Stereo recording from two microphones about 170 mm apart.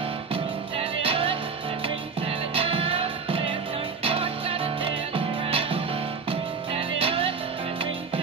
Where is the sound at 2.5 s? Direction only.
35° right (ahead or behind).